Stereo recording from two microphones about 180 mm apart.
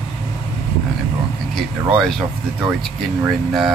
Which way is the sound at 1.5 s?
Centre (ahead or behind).